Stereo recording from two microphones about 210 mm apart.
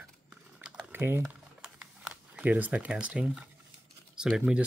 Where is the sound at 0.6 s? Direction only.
5° right (ahead or behind).